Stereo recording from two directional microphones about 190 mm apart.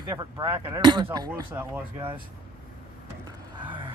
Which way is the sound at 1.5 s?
10° right (ahead or behind).